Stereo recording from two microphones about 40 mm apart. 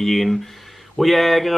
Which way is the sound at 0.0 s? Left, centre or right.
Centre.